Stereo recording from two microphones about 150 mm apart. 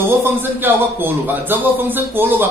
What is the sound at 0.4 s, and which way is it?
A man's voice, 15° right (ahead or behind).